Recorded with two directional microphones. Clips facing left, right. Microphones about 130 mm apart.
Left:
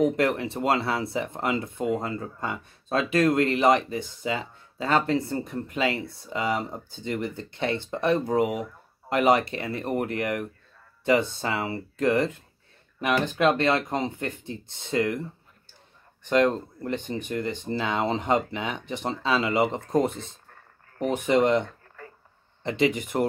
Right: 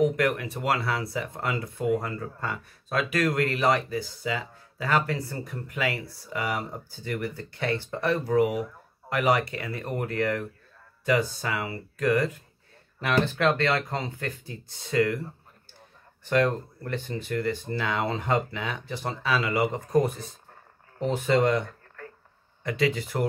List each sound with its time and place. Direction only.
0.0 s speech: 25° left (ahead or behind)
16.3 s speech: 20° left (ahead or behind)
22.0 s a sound: 5° left (ahead or behind)
22.6 s speech: 25° left (ahead or behind)